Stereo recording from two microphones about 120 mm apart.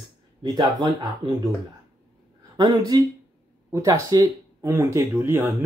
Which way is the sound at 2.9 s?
35° right (ahead or behind).